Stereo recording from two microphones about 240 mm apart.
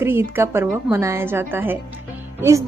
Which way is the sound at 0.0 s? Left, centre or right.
Centre.